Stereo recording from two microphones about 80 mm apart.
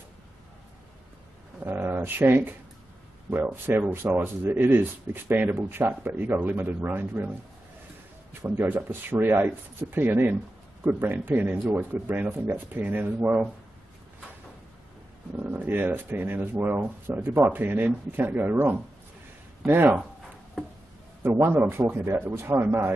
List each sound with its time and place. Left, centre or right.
1.6 s speech: right
8.3 s speech: right
15.3 s speech: right
20.6 s a sound: centre
21.2 s a man's voice: right